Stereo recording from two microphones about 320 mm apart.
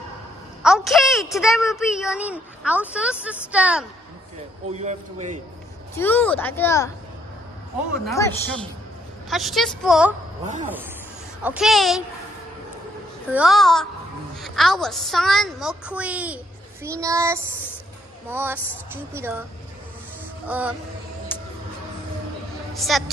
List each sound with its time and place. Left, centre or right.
0.6 s a child's voice: centre
4.6 s a man's voice: right
5.9 s speech: centre
8.0 s a woman's voice: centre
11.4 s a woman's voice: centre
13.3 s a woman's voice: centre
16.8 s child singing: centre
20.4 s a woman's voice: centre
21.3 s music: centre
22.8 s a woman's voice: centre